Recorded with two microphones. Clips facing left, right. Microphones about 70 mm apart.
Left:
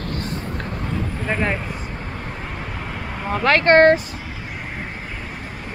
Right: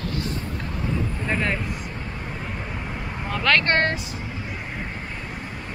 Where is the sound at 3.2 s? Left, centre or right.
Left.